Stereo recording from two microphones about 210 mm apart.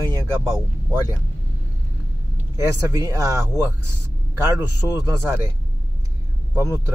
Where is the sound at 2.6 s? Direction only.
15° right (ahead or behind).